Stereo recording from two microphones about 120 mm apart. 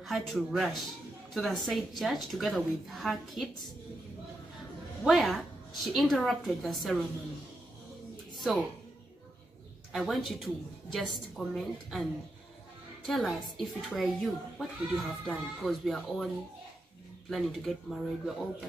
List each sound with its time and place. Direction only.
0.0 s speech: centre (ahead or behind)
5.0 s speech: centre (ahead or behind)
9.9 s speech: centre (ahead or behind)
17.3 s speech: centre (ahead or behind)